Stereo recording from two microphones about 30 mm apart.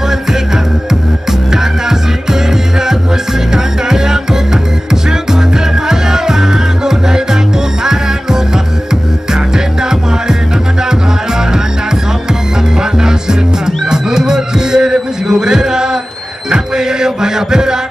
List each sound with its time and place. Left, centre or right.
1.5 s music: centre
3.5 s music: centre
5.9 s music: centre
12.7 s music: right